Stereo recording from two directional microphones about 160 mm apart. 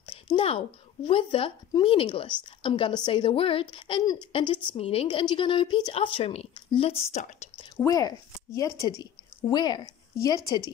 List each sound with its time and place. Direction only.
0.0 s a sound: 35° left (ahead or behind)
1.0 s speech: 35° left (ahead or behind)
7.7 s a woman's voice: 20° left (ahead or behind)